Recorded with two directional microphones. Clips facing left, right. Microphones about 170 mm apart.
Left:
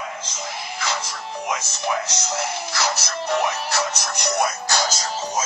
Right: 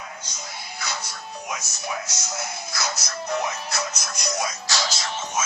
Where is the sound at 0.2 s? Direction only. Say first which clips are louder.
Left 6 dB; 90° left.